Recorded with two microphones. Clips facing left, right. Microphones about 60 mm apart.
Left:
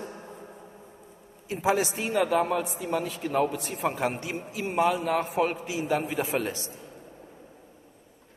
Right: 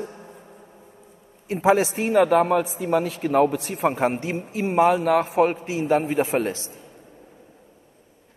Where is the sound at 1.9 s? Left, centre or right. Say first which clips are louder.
Right 7 dB; right.